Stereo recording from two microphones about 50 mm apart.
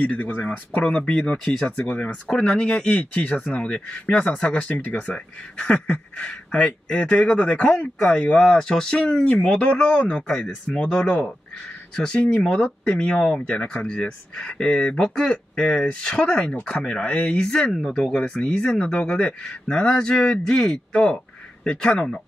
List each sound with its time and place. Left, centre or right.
0.0 s speech: left
3.0 s speech: left
8.0 s speech: centre